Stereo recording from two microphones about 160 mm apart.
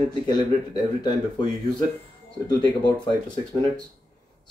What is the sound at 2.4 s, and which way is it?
Speech, 25° left (ahead or behind).